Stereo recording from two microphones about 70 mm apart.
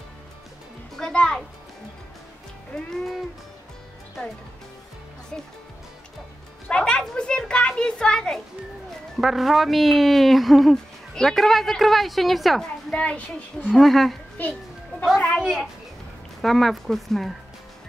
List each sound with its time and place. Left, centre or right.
1.1 s music: centre
2.7 s music: centre
5.3 s speech: centre
6.7 s a sound: centre
9.1 s speech: centre
12.9 s a child's voice: centre
13.7 s speech: centre
14.4 s a child's voice: left
15.4 s speech: centre